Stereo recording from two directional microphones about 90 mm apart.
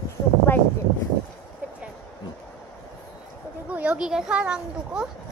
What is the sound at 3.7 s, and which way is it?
A child's voice, 15° right (ahead or behind).